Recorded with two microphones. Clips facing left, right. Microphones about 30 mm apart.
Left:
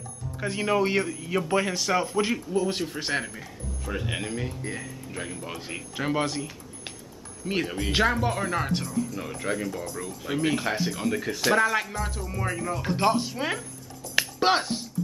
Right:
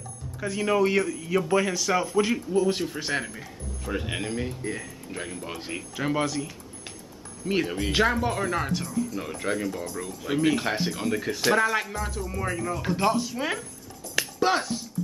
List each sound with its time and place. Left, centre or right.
0.4 s speech: centre
1.1 s speech: centre
1.5 s speech: centre
1.9 s speech: centre
5.9 s speech: centre
7.4 s speech: centre
12.9 s speech: centre
14.1 s music: left